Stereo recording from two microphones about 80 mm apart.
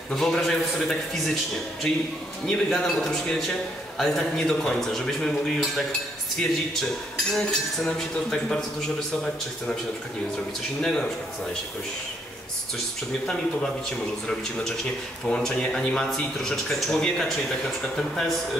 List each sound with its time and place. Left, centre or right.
0.1 s speech: centre
7.3 s speech: centre
10.8 s speech: centre
15.2 s speech: centre